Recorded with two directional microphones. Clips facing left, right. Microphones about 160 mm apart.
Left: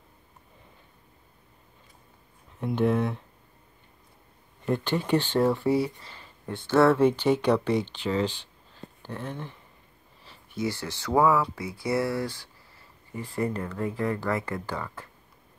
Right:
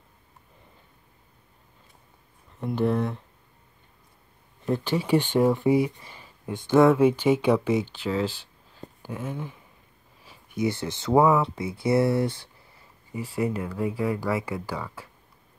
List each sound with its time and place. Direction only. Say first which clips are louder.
2.6 s speech: even; centre (ahead or behind)
4.6 s speech: right 1 dB; 5° right (ahead or behind); by 12.4 s 20° right (ahead or behind)
13.1 s speech: right 2 dB; 5° right (ahead or behind)